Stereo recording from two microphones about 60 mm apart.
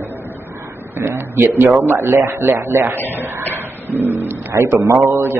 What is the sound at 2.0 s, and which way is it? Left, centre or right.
A man's voice, right.